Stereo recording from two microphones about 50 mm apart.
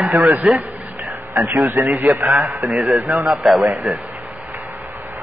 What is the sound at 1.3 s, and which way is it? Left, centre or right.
Speech, right.